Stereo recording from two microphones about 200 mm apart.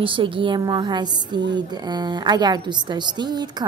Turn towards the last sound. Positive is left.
turn(degrees=-20)  # may be behind; listen again after turning